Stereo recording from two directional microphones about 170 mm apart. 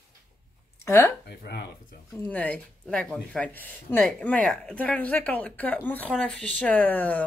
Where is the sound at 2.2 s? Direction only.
10° left (ahead or behind).